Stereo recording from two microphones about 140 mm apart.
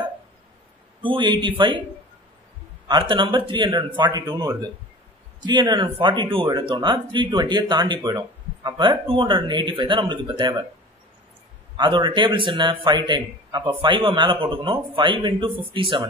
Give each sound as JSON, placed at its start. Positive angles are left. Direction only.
{"t": 1.0, "sound": "speech", "side_deg": -35}
{"t": 2.9, "sound": "speech", "side_deg": -35}
{"t": 11.7, "sound": "speech", "side_deg": -35}